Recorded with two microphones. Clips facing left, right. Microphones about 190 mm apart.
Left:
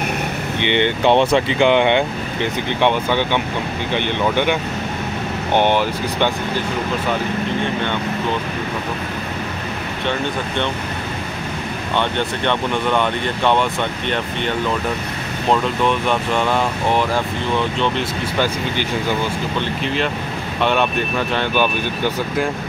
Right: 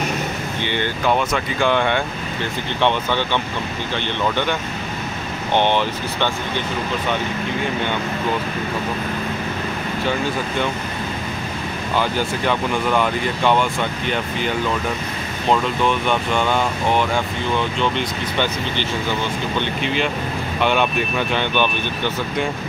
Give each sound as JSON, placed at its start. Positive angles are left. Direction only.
{"t": 0.6, "sound": "speech", "side_deg": 20}
{"t": 12.0, "sound": "speech", "side_deg": 0}
{"t": 15.5, "sound": "speech", "side_deg": 0}